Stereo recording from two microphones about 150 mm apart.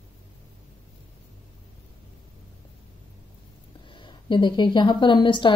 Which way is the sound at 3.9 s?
35° left (ahead or behind).